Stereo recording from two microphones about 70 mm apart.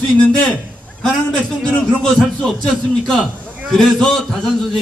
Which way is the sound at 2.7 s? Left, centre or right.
Centre.